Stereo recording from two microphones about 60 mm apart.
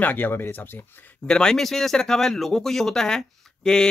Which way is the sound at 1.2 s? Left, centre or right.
Centre.